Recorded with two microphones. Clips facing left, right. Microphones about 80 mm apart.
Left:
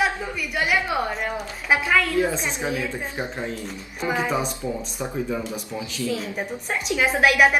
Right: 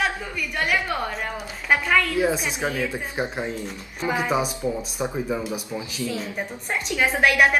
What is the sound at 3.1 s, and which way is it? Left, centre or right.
Speech, centre.